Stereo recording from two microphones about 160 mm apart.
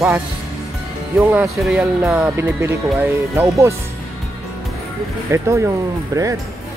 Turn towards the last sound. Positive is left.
turn(degrees=-20)  # may be behind; listen again after turning